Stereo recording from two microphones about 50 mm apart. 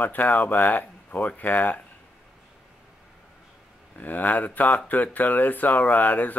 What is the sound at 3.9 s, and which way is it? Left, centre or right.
Speech, left.